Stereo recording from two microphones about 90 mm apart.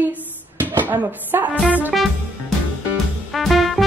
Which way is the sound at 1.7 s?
15° right (ahead or behind).